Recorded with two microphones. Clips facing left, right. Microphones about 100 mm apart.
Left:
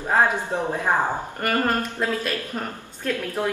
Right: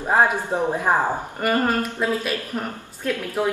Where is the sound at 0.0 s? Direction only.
20° right (ahead or behind).